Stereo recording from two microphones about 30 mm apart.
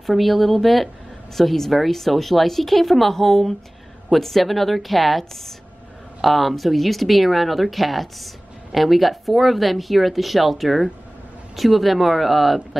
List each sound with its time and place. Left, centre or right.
0.0 s a woman's voice: centre